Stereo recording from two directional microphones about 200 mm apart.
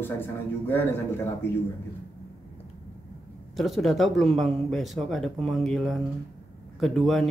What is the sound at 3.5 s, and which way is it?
Speech, centre (ahead or behind).